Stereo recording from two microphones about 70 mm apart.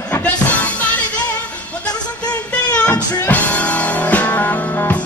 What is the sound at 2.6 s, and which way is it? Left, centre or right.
Music, centre.